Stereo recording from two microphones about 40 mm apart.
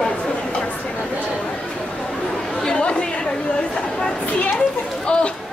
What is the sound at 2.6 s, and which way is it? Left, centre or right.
Chatter, left.